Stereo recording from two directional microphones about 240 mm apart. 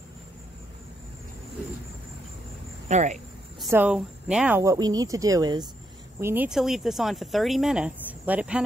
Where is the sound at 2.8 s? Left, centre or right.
Right.